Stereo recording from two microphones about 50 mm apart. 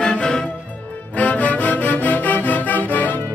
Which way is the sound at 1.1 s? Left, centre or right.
Left.